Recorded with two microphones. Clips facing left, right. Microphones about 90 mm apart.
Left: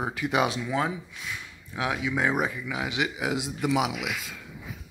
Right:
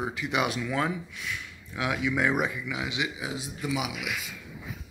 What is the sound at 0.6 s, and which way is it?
Speech, 30° left (ahead or behind).